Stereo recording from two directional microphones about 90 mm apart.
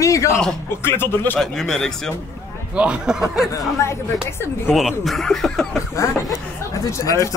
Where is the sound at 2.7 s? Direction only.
10° right (ahead or behind).